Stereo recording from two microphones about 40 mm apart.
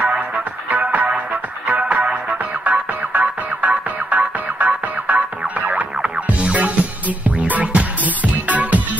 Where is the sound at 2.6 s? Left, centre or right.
Right.